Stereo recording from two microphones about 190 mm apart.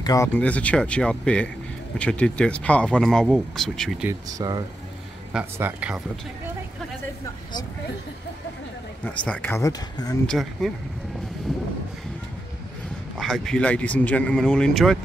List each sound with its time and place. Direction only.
0.0 s speech: 20° left (ahead or behind)
0.3 s speech: 5° left (ahead or behind)
4.3 s speech: 20° right (ahead or behind)
5.3 s speech: 10° right (ahead or behind)
9.0 s speech: 5° left (ahead or behind)
10.2 s speech: centre (ahead or behind)
13.2 s speech: centre (ahead or behind)